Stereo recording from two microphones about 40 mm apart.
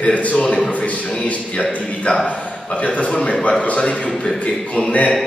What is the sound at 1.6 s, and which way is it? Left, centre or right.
A man's voice, left.